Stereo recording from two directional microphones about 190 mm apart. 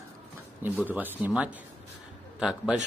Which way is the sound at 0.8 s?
10° right (ahead or behind).